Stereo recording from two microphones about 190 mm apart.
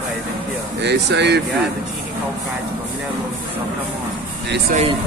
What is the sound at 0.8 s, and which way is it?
Speech, 65° right (ahead or behind).